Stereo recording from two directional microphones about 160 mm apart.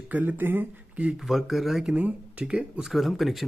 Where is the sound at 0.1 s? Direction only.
10° right (ahead or behind).